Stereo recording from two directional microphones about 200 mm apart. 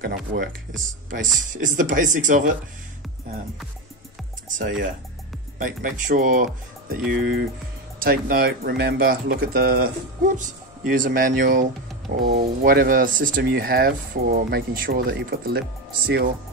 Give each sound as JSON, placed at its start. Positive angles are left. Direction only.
{"t": 0.0, "sound": "speech", "side_deg": -45}
{"t": 4.5, "sound": "speech", "side_deg": -40}